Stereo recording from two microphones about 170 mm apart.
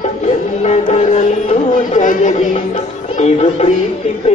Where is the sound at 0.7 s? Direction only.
40° left (ahead or behind).